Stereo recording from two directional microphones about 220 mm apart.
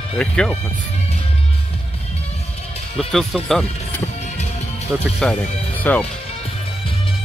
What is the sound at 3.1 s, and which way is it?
Speech, centre (ahead or behind).